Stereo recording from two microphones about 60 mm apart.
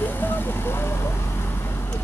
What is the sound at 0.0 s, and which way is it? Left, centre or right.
Vehicle, left.